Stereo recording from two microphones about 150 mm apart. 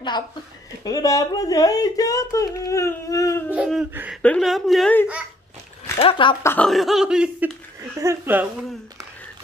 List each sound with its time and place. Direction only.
0.8 s speech: 25° left (ahead or behind)
3.4 s speech: 10° right (ahead or behind)
4.2 s speech: 5° left (ahead or behind)
5.9 s speech: 35° left (ahead or behind)
6.4 s speech: 15° left (ahead or behind)
6.7 s speech: centre (ahead or behind)